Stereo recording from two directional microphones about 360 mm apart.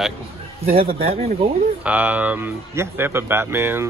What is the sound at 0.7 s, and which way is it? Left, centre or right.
Speech, centre.